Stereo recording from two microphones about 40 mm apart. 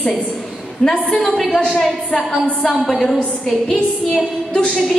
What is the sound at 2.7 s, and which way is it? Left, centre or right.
Speech, centre.